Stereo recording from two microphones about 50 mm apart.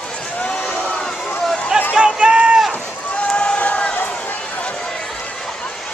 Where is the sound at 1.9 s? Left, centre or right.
Centre.